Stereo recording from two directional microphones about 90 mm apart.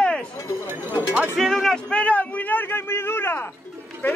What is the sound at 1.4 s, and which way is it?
A man's voice, centre (ahead or behind).